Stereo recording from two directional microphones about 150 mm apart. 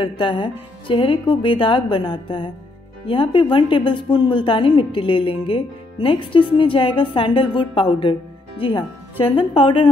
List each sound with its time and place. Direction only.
0.0 s a woman's voice: 35° left (ahead or behind)